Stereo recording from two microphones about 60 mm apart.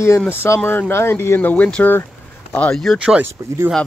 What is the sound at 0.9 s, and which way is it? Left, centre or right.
Speech, left.